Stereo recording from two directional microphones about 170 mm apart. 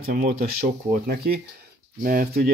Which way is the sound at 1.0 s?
70° right (ahead or behind).